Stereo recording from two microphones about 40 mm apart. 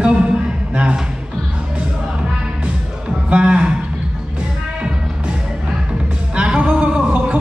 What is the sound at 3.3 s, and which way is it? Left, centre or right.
Speech, right.